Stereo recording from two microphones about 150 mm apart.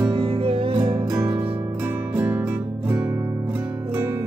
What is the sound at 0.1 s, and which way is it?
Music, 35° right (ahead or behind).